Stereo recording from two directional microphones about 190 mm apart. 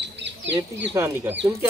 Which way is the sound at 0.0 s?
70° right (ahead or behind).